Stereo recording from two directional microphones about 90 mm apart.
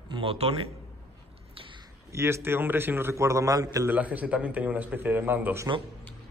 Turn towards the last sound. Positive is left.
turn(degrees=-25)  # may be behind; listen again after turning